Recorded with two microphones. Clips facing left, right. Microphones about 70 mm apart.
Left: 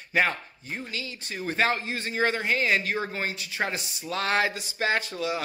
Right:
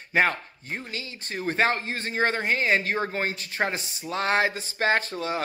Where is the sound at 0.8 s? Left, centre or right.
Right.